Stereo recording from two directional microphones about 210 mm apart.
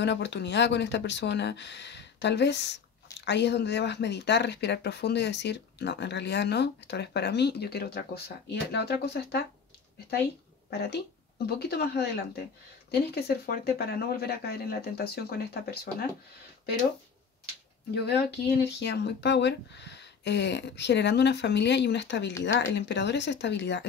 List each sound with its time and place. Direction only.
0.0 s speech: 55° left (ahead or behind)
10.7 s speech: 50° left (ahead or behind)
17.9 s speech: 55° left (ahead or behind)